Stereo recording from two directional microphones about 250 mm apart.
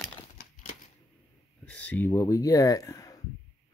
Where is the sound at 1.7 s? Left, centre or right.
Centre.